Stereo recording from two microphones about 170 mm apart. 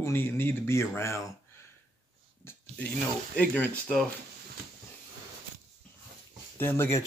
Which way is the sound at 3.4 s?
10° left (ahead or behind).